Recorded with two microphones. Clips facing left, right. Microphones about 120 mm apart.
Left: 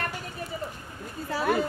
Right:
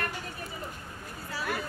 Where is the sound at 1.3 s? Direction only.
50° left (ahead or behind).